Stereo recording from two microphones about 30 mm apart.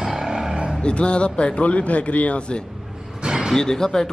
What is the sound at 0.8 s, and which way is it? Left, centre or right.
A man's voice, left.